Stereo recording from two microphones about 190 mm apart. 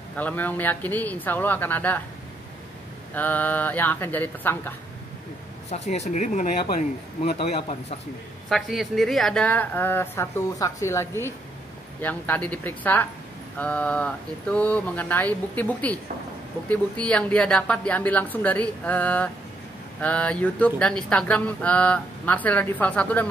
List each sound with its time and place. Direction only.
0.1 s speech: 10° left (ahead or behind)
3.2 s speech: 10° left (ahead or behind)
5.7 s speech: 35° left (ahead or behind)
8.5 s speech: centre (ahead or behind)